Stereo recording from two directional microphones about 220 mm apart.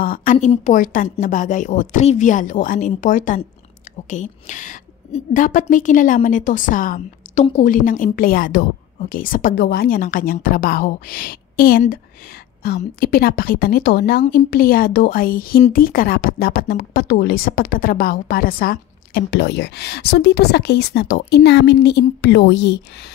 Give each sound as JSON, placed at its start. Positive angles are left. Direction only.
{"t": 0.0, "sound": "a woman's voice", "side_deg": 40}